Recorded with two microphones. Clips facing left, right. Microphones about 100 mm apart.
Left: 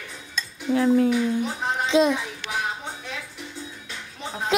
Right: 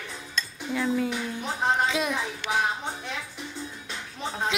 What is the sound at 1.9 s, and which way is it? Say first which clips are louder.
Speech: left 8 dB; 25° left (ahead or behind).